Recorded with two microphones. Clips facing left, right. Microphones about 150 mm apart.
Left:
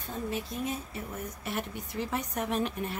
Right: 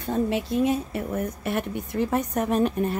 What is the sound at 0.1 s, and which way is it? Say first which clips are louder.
Speech: right 11 dB; 85° right.